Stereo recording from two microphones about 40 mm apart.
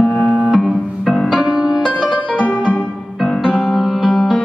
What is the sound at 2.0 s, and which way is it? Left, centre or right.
Music, right.